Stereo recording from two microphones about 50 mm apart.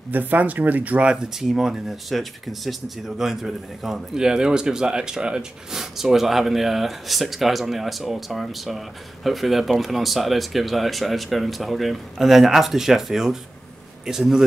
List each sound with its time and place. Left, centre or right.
0.1 s speech: right
1.0 s a man's voice: centre